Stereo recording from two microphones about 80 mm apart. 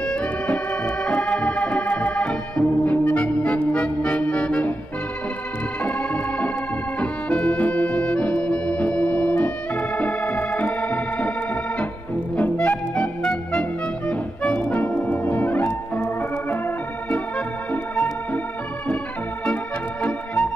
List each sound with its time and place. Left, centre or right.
0.0 s organ: centre
5.8 s organ: centre
12.4 s music: left
16.2 s organ: left
19.4 s organ: centre